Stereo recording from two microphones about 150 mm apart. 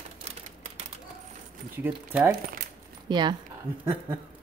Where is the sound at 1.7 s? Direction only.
10° right (ahead or behind).